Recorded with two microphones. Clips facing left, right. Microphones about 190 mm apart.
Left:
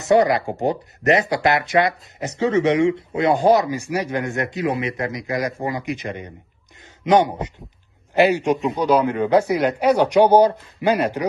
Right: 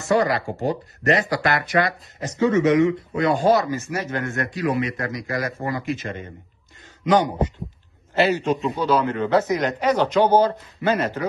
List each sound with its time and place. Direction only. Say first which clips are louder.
0.0 s speech: left 4 dB; 20° left (ahead or behind)